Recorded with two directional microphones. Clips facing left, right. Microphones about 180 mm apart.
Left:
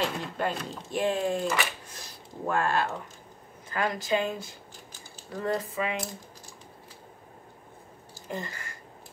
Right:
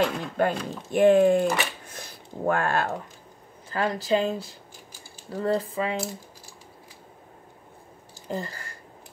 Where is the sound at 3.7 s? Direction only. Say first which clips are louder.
Right 3 dB; 30° right (ahead or behind).